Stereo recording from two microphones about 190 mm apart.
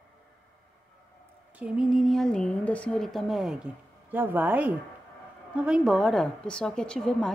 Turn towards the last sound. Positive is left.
turn(degrees=0)  # may be behind; listen again after turning